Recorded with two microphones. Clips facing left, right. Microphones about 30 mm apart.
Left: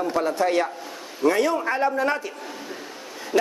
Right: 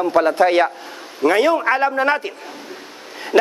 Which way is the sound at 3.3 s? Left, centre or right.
Right.